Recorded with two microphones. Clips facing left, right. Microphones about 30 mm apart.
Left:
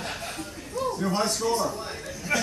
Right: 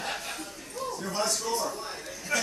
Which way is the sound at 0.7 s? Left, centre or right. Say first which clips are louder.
Left 5 dB; left.